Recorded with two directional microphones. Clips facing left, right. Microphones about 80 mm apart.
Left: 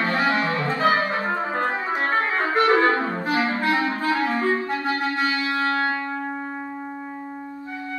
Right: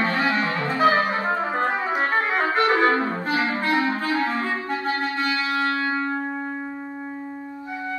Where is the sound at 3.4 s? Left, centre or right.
Left.